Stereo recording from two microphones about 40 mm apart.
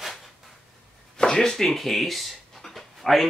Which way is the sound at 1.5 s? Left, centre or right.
Centre.